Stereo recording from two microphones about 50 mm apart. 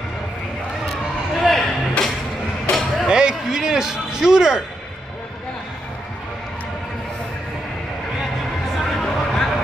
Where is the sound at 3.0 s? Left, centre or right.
Centre.